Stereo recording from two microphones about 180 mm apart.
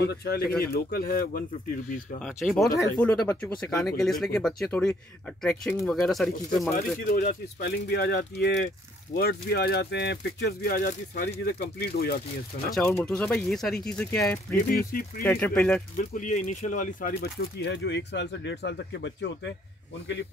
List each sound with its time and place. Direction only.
0.0 s speech: 65° left (ahead or behind)
2.2 s speech: centre (ahead or behind)
7.1 s speech: 55° left (ahead or behind)
12.7 s speech: 5° left (ahead or behind)
14.5 s speech: 55° left (ahead or behind)
15.2 s speech: 5° left (ahead or behind)
16.0 s speech: 45° left (ahead or behind)
17.2 s speech: 70° left (ahead or behind)